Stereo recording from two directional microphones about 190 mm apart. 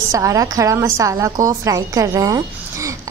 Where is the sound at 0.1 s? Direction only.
15° right (ahead or behind).